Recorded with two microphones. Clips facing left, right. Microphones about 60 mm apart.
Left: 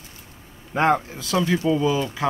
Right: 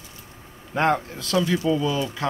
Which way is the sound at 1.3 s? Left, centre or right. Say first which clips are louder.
Left 1 dB; centre.